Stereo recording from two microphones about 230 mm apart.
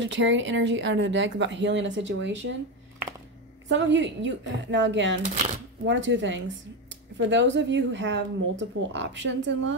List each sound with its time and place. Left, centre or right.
0.0 s speech: right
3.6 s speech: right
5.2 s speech: right
5.9 s speech: right